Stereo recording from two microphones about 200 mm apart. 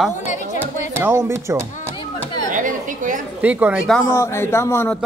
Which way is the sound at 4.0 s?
15° left (ahead or behind).